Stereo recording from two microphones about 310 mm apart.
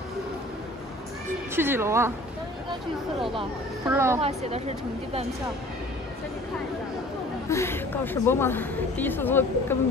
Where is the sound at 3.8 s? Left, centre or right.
Centre.